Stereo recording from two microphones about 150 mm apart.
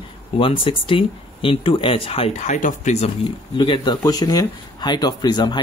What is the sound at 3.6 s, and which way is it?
Speech, 30° left (ahead or behind).